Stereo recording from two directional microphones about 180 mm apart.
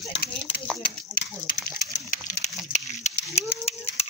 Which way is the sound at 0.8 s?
50° left (ahead or behind).